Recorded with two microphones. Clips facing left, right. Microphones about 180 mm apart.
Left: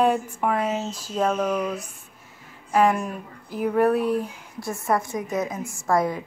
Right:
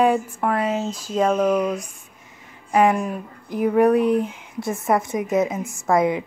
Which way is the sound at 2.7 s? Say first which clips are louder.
Right 2 dB; centre (ahead or behind).